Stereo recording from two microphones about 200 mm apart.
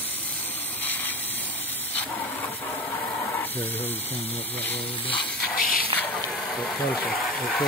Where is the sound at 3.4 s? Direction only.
10° left (ahead or behind).